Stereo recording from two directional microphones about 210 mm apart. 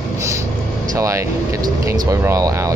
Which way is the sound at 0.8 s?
15° right (ahead or behind).